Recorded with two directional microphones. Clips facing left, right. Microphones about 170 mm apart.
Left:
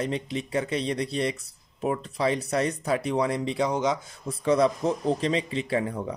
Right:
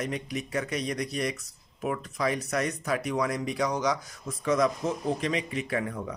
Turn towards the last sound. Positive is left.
turn(degrees=30)  # may be behind; listen again after turning